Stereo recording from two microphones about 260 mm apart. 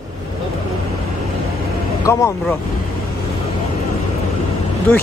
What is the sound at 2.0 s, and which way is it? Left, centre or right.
Speech, centre.